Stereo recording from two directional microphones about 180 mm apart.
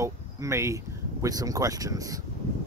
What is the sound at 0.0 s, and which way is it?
Speech, 15° right (ahead or behind).